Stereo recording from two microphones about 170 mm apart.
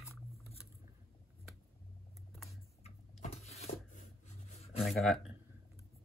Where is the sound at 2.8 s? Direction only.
40° left (ahead or behind).